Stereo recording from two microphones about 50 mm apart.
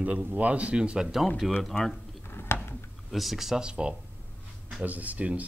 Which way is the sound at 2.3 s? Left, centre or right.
Left.